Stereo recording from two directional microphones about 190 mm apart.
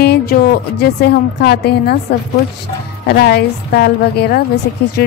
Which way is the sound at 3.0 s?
60° left (ahead or behind).